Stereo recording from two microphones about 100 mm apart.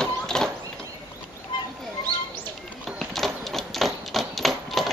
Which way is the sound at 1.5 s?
55° left (ahead or behind).